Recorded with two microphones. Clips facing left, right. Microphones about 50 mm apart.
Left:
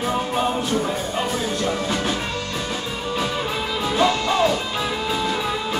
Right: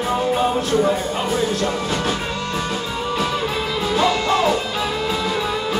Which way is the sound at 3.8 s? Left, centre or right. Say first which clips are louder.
Right 1 dB; centre.